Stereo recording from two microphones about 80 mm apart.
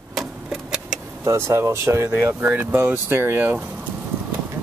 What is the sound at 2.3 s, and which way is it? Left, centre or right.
Speech, right.